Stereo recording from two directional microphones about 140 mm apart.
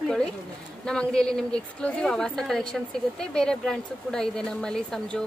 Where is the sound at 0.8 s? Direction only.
5° left (ahead or behind).